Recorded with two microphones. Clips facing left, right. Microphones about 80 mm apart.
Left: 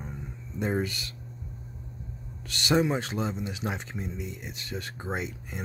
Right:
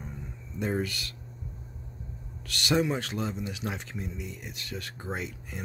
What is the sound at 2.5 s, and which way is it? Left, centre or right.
Speech, left.